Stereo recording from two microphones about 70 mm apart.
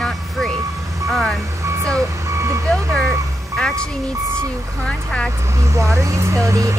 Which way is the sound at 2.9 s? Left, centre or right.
Centre.